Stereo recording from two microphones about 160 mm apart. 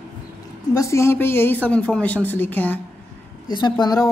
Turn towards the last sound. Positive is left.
turn(degrees=25)  # may be behind; listen again after turning